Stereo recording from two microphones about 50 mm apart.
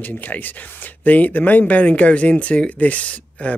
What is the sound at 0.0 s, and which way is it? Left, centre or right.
Speech, left.